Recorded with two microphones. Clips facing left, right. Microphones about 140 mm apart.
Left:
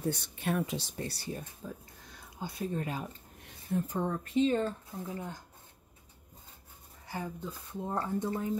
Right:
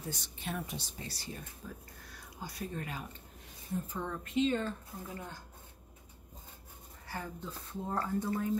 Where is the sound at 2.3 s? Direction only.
25° left (ahead or behind).